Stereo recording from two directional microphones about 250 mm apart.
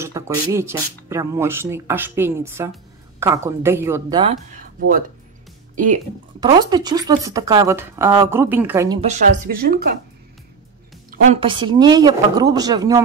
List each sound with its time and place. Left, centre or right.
0.0 s speech: centre
4.7 s speech: right
6.4 s speech: centre
9.0 s speech: right
11.1 s speech: right